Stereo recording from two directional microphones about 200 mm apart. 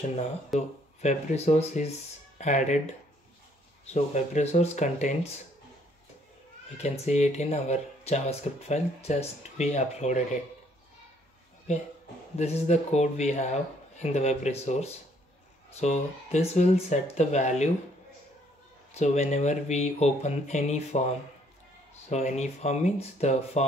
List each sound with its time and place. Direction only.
0.6 s speech: 35° left (ahead or behind)
3.8 s speech: 35° left (ahead or behind)
6.8 s speech: 35° left (ahead or behind)
12.4 s speech: 35° left (ahead or behind)
18.9 s speech: 35° left (ahead or behind)
22.1 s speech: 35° left (ahead or behind)